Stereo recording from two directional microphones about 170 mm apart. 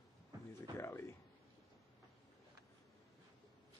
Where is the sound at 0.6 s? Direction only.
15° left (ahead or behind).